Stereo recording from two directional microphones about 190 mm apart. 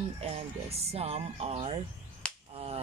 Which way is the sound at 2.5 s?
30° right (ahead or behind).